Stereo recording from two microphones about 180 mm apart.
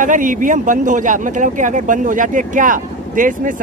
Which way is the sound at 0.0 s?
45° right (ahead or behind).